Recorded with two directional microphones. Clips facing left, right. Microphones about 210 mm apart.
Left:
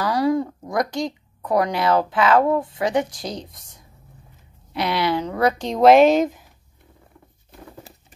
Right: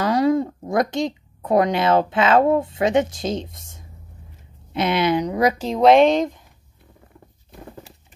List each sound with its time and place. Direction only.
0.0 s speech: 20° right (ahead or behind)
5.7 s speech: centre (ahead or behind)